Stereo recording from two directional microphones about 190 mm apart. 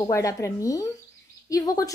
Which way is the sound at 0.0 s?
15° left (ahead or behind).